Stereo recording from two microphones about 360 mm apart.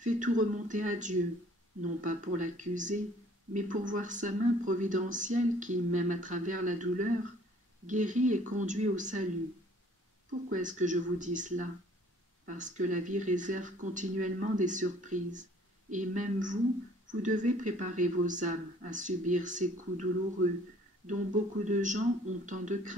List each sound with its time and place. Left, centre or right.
0.0 s speech: right
10.5 s speech: right
21.1 s speech: right